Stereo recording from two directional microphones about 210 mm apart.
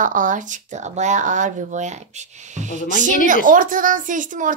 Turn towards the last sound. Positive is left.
turn(degrees=-40)  # may be behind; listen again after turning